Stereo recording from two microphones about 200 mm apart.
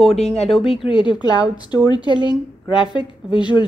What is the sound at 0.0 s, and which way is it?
Speech, centre (ahead or behind).